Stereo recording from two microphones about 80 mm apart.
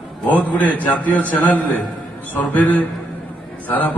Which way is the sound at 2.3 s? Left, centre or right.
Left.